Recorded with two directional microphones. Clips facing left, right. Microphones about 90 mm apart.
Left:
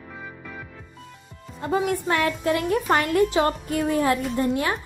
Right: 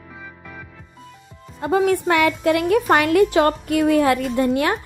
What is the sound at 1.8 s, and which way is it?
A woman's voice, 75° right (ahead or behind).